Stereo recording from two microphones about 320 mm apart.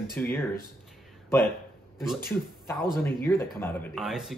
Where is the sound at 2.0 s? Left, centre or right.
Centre.